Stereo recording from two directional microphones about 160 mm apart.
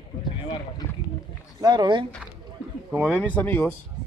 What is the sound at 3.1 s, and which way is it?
Speech, 10° left (ahead or behind).